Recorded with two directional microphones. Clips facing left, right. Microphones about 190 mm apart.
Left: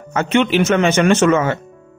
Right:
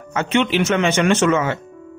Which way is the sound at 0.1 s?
45° left (ahead or behind).